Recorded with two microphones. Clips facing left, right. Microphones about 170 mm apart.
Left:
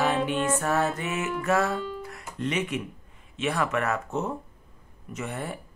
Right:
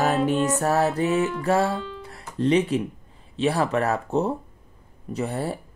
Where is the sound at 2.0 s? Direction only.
30° right (ahead or behind).